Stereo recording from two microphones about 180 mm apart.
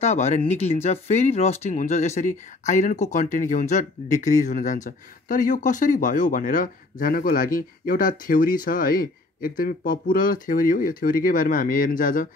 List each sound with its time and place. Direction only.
0.0 s speech: 40° left (ahead or behind)